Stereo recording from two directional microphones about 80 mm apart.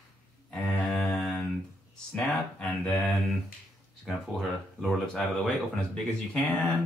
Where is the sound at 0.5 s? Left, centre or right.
Centre.